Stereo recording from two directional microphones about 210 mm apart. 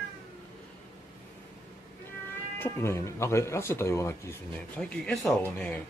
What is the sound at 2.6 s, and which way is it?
Speech, 15° left (ahead or behind).